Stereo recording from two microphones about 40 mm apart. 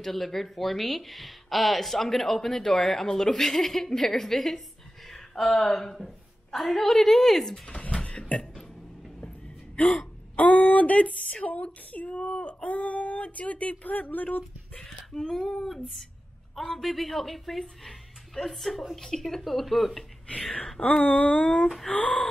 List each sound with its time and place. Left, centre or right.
0.0 s a woman's voice: centre
7.6 s a sound: left
10.3 s speech: left
14.8 s a woman's voice: centre
21.0 s speech: left
21.9 s speech: left